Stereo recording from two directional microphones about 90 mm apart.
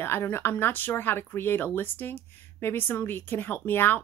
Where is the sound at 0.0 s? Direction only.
25° left (ahead or behind).